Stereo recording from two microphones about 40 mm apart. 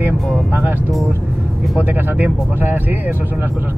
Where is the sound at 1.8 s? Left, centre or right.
Right.